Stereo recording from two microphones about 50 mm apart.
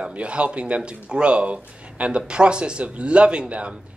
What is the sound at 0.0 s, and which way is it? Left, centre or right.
Speech, right.